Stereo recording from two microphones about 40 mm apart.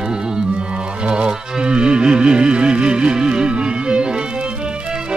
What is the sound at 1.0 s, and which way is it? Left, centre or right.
Music, right.